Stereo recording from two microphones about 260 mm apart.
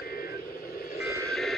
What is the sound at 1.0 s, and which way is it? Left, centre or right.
Vehicle, centre.